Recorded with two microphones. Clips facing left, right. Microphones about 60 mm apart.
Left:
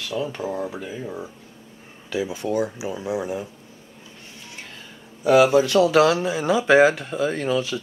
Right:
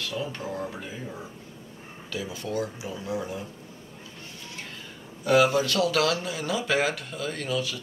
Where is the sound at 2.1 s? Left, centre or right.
Centre.